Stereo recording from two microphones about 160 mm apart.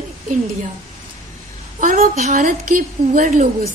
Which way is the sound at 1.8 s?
55° right (ahead or behind).